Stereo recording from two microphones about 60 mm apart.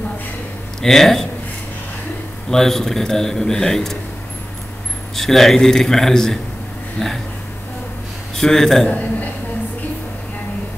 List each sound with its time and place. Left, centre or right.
0.8 s a man's voice: centre
2.5 s a man's voice: centre
5.1 s a man's voice: centre
8.4 s a man's voice: centre